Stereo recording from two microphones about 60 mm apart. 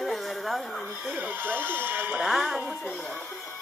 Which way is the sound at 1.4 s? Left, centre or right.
Right.